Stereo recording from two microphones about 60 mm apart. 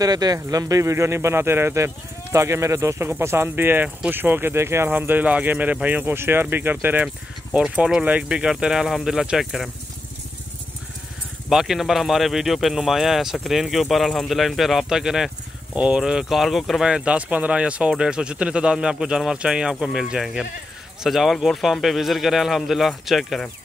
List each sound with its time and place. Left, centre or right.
0.0 s speech: right
3.0 s speech: right
4.8 s speech: right
7.5 s speech: centre
11.4 s speech: centre
15.7 s speech: centre
16.0 s speech: centre
16.8 s speech: centre